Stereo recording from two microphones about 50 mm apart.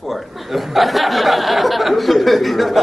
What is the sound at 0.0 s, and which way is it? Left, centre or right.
Speech, centre.